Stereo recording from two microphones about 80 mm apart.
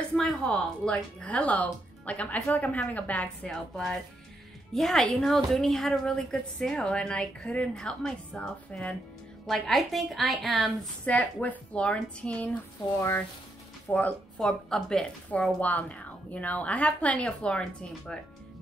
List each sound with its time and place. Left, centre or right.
0.1 s a woman's voice: centre
3.5 s a woman's voice: centre
9.5 s a woman's voice: centre
11.1 s a woman's voice: centre
13.8 s speech: centre
14.4 s a woman's voice: centre
15.6 s a woman's voice: centre